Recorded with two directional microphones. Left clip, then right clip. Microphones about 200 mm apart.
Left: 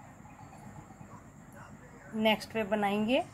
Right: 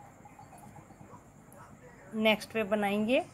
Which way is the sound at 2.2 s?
20° right (ahead or behind).